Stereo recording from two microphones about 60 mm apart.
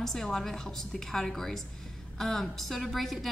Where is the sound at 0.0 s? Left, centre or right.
Centre.